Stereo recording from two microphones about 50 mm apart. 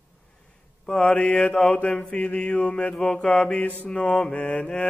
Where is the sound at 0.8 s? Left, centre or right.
Centre.